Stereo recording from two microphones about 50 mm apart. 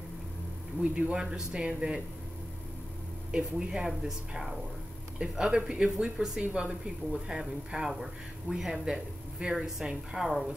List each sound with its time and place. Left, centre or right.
0.8 s a man's voice: right
1.1 s speech: centre
3.3 s speech: centre